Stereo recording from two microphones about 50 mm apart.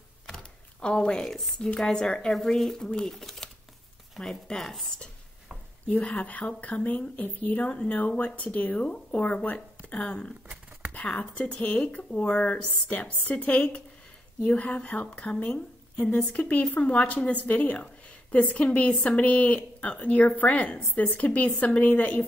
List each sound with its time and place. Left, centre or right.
0.3 s a sound: centre
1.3 s speech: centre
1.8 s speech: centre
5.9 s a woman's voice: left